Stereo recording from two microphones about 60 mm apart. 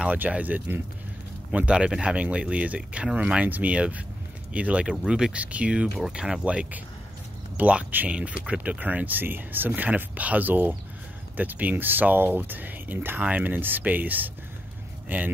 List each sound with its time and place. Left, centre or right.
0.1 s speech: right